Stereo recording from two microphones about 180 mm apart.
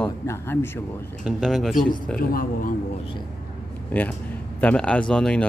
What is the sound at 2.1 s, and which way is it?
Speech, 50° left (ahead or behind).